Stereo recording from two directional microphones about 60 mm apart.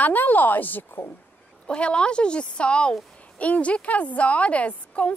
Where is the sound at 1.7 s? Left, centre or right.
Centre.